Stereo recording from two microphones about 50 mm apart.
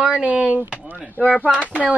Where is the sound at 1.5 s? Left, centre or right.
Right.